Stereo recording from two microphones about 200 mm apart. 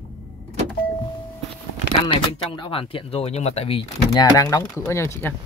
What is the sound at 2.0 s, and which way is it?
Speech, 25° left (ahead or behind).